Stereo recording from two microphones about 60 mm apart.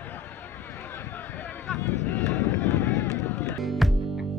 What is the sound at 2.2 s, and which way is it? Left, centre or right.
Run, left.